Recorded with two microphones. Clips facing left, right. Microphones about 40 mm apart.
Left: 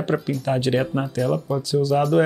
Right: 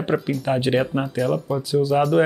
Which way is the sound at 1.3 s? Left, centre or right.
Centre.